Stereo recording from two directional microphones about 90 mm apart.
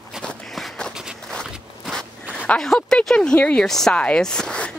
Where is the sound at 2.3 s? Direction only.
10° left (ahead or behind).